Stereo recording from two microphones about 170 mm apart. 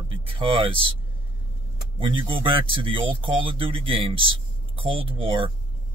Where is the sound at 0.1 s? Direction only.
30° right (ahead or behind).